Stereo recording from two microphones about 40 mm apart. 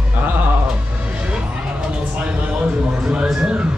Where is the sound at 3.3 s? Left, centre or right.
Right.